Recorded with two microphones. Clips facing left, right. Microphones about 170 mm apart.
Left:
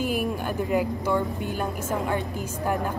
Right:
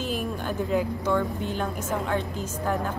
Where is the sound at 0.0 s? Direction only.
10° left (ahead or behind).